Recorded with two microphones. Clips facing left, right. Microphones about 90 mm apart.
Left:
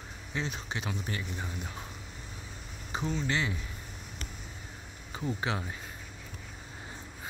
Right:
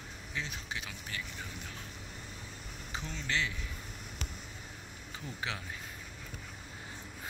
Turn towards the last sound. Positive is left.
turn(degrees=25)  # may be behind; listen again after turning